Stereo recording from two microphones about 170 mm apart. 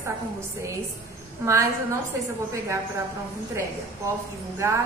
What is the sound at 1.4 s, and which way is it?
Speech, 15° right (ahead or behind).